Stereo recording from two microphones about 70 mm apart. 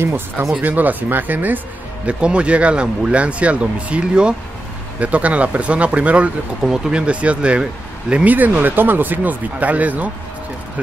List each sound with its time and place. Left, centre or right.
0.0 s speech: right
0.6 s speech: right